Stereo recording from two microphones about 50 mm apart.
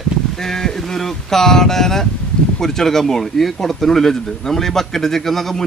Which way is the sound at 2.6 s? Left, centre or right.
Centre.